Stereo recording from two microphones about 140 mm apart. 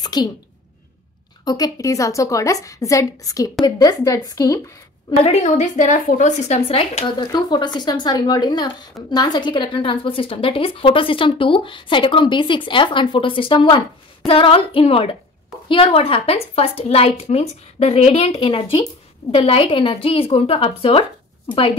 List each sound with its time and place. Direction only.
0.0 s a woman's voice: 30° left (ahead or behind)
1.4 s a woman's voice: 30° left (ahead or behind)
5.2 s a woman's voice: 55° left (ahead or behind); by 21.7 s 40° left (ahead or behind)